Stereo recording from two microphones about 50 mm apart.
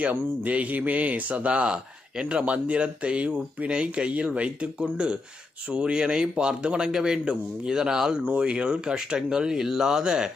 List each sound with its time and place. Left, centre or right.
0.1 s speech: right; by 10.3 s centre